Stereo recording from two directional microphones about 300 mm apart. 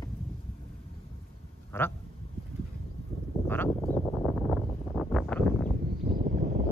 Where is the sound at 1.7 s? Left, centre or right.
Centre.